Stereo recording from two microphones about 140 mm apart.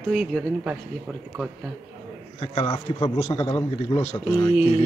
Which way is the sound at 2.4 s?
40° left (ahead or behind).